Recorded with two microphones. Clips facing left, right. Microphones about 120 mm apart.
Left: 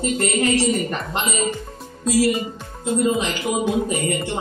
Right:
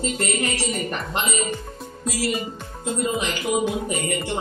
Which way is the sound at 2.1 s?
25° left (ahead or behind).